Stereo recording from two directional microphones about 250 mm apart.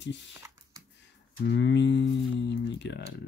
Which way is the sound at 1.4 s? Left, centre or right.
Left.